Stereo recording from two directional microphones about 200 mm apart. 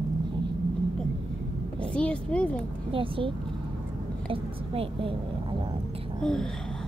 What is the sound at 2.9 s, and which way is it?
A woman's voice, 25° right (ahead or behind).